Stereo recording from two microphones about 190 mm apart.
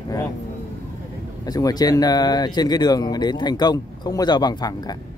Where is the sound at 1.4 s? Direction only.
20° left (ahead or behind).